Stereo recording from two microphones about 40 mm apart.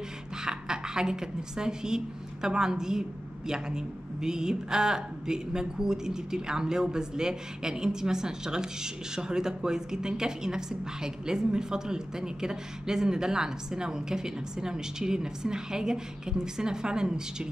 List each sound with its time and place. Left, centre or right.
0.4 s a woman's voice: centre